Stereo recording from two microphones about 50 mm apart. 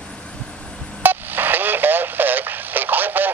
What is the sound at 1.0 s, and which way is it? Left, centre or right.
Radio, right.